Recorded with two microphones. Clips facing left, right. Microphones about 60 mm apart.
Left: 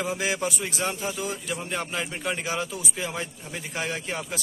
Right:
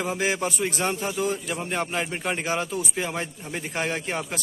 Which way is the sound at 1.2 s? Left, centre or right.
Right.